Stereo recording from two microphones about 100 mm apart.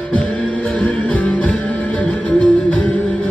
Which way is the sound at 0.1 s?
15° left (ahead or behind).